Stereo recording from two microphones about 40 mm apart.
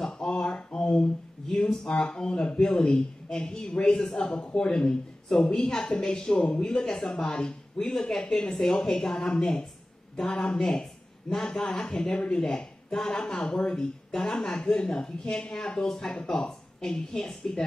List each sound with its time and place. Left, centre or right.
0.0 s a sound: centre
0.6 s a sound: left
0.8 s speech: left
6.4 s speech: left
7.3 s speech: left
7.9 s speech: centre